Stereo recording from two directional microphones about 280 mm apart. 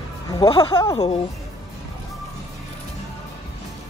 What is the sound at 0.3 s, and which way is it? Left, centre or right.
Speech, centre.